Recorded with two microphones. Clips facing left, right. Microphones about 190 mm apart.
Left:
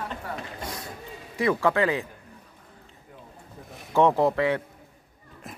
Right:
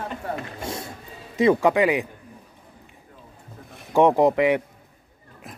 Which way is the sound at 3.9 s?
15° right (ahead or behind).